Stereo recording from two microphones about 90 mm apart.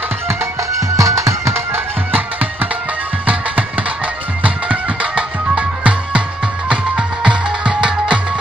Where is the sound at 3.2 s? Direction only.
15° right (ahead or behind).